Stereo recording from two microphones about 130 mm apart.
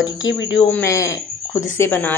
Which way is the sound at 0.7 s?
20° left (ahead or behind).